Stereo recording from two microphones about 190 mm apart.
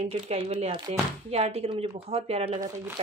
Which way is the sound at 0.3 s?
35° right (ahead or behind).